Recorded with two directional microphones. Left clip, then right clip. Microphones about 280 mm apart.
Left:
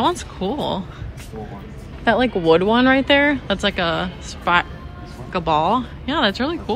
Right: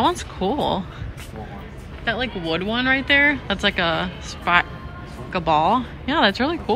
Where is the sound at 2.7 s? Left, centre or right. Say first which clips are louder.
Left 3 dB; centre.